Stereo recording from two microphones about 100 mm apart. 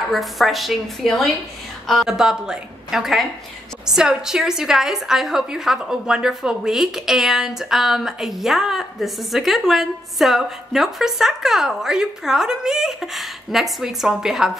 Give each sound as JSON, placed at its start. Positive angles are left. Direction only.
{"t": 0.1, "sound": "a woman's voice", "side_deg": 0}